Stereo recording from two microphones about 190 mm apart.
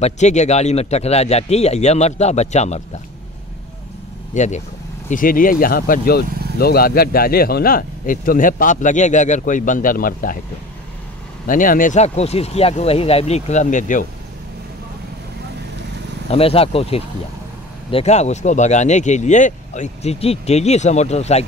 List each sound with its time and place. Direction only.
0.0 s speech: 35° left (ahead or behind)
4.3 s speech: 40° left (ahead or behind)
11.4 s speech: 45° left (ahead or behind)
16.3 s speech: 30° left (ahead or behind)